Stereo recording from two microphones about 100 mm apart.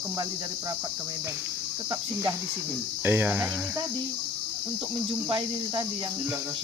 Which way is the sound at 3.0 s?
20° right (ahead or behind).